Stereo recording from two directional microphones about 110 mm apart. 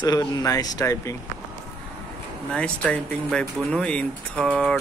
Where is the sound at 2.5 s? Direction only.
10° left (ahead or behind).